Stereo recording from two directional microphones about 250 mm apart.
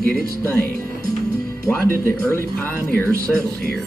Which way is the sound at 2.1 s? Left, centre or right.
Centre.